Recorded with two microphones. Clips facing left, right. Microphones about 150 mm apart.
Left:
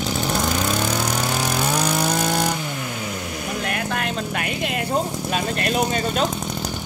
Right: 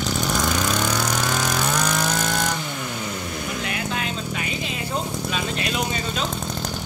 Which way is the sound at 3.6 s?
55° left (ahead or behind).